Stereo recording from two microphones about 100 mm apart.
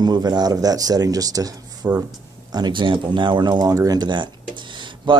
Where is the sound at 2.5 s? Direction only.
45° right (ahead or behind).